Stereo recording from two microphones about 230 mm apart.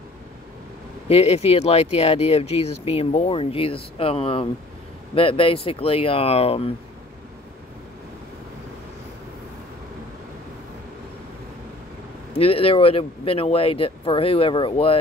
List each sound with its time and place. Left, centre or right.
1.0 s speech: left
12.4 s speech: left